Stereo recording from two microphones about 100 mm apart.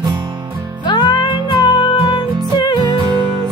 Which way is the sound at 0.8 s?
45° left (ahead or behind).